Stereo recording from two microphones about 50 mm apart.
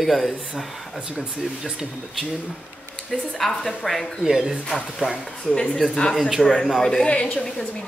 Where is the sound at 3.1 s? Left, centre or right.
Centre.